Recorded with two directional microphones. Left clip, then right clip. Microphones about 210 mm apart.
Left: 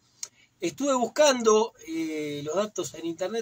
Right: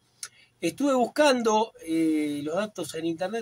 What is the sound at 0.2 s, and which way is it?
Speech, 15° right (ahead or behind).